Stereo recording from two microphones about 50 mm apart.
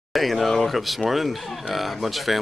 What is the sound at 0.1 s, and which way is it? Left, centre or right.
A man's voice, centre.